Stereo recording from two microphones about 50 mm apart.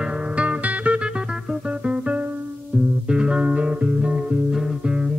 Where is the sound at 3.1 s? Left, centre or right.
Centre.